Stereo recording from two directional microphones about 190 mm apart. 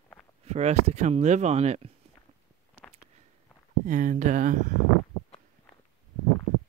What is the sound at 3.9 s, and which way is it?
Speech, 40° right (ahead or behind).